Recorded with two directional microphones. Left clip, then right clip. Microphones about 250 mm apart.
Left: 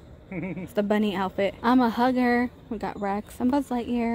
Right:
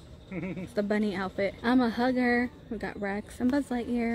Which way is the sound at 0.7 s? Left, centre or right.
Centre.